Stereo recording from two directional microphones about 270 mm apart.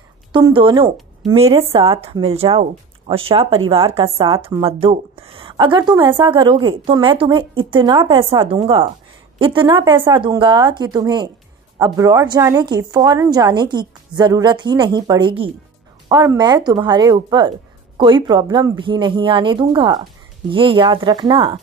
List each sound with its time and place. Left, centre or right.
0.3 s a woman's voice: centre